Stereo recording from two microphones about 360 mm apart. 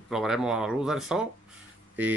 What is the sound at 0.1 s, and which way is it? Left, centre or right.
Speech, centre.